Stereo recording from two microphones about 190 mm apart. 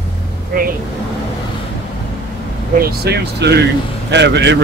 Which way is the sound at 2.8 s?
55° right (ahead or behind).